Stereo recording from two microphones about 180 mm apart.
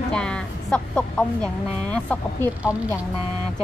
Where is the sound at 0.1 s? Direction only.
5° left (ahead or behind).